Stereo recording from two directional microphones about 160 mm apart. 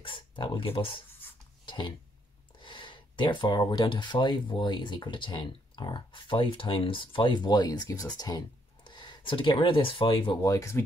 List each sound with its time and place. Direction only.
0.0 s speech: 30° left (ahead or behind)